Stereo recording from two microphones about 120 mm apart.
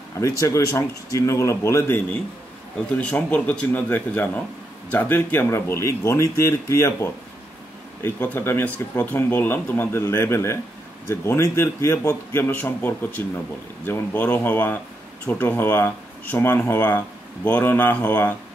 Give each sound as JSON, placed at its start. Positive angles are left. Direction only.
{"t": 0.2, "sound": "speech", "side_deg": 25}
{"t": 2.9, "sound": "speech", "side_deg": 10}